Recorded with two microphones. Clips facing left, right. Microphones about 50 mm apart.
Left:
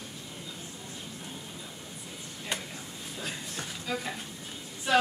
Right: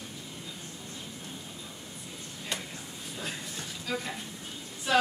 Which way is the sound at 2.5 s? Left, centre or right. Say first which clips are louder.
Left 1 dB; centre.